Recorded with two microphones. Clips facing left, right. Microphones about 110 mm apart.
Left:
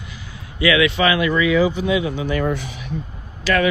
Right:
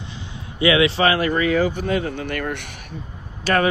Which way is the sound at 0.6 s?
30° right (ahead or behind).